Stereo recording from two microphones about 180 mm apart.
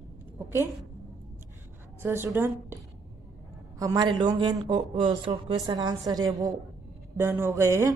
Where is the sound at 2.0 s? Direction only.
15° right (ahead or behind).